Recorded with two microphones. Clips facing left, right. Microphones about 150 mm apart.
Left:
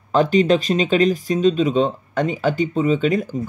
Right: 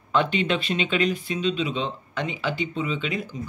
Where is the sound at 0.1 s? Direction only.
40° left (ahead or behind).